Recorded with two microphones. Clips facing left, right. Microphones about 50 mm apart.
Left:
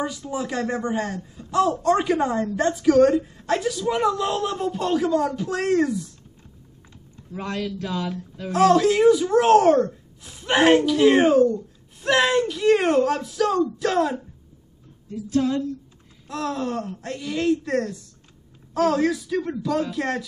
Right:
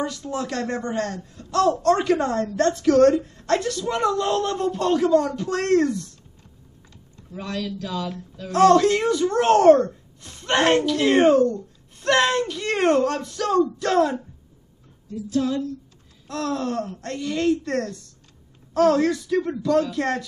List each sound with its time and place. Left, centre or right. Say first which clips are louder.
0.0 s speech: even; centre
7.3 s a man's voice: left 1 dB; left
8.5 s a child's voice: right 2 dB; centre
15.0 s a man's voice: left 1 dB; left
16.3 s a child's voice: right 1 dB; centre